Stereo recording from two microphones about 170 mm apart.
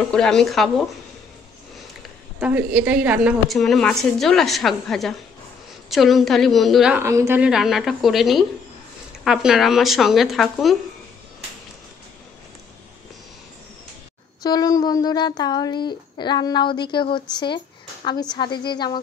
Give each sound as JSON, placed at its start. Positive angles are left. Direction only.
{"t": 0.1, "sound": "speech", "side_deg": 5}
{"t": 2.4, "sound": "a woman's voice", "side_deg": -10}
{"t": 7.0, "sound": "speech", "side_deg": -15}
{"t": 14.4, "sound": "speech", "side_deg": 20}